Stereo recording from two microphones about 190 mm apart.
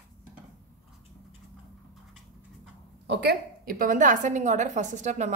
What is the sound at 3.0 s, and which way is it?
A woman's voice, 60° right (ahead or behind).